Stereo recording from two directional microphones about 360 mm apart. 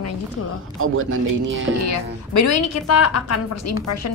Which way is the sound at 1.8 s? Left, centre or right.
Left.